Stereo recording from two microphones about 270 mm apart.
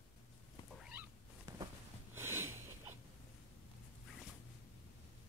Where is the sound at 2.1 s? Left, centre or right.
Centre.